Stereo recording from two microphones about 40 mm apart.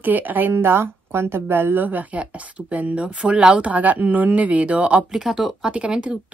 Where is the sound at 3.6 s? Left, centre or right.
Right.